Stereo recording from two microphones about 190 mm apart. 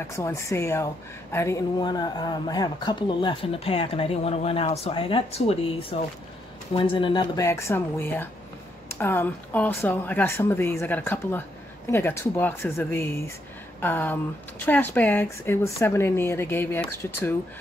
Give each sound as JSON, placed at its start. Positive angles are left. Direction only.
{"t": 0.0, "sound": "speech", "side_deg": 15}
{"t": 7.4, "sound": "speech", "side_deg": 15}